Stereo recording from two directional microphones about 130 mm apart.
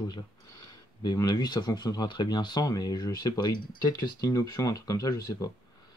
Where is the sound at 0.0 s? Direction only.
30° left (ahead or behind).